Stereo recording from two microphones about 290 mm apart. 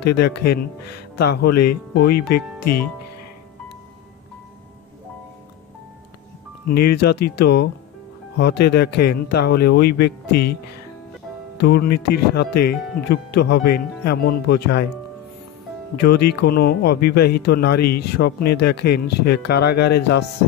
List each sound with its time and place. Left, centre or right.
0.0 s speech: left
6.7 s speech: left
11.6 s speech: left
16.0 s speech: left